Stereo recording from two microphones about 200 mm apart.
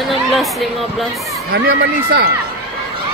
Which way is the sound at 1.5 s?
55° right (ahead or behind).